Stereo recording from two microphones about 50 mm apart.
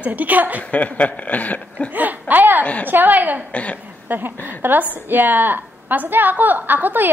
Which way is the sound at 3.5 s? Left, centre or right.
Left.